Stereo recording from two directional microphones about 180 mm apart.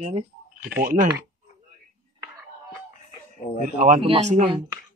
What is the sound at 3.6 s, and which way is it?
Speech, 45° right (ahead or behind).